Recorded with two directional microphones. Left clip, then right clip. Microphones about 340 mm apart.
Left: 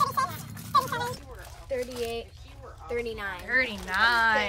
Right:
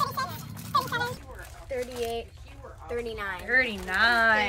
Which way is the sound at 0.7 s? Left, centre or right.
Centre.